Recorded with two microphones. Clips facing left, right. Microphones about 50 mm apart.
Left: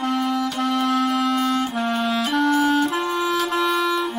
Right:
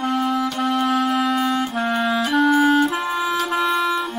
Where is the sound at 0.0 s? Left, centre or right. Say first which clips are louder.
Right 1 dB; centre.